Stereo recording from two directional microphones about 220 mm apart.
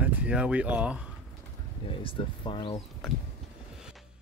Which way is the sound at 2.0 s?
25° left (ahead or behind).